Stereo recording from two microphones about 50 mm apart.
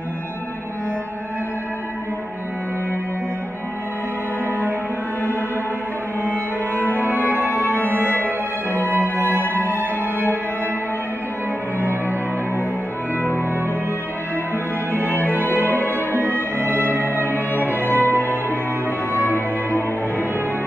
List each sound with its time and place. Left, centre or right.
6.2 s cello: right
6.8 s music: left
7.3 s music: right
11.8 s music: right
15.0 s music: right
15.3 s music: left
16.5 s music: right
18.0 s music: left